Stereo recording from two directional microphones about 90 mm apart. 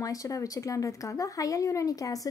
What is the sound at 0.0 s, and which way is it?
A woman's voice, 40° left (ahead or behind).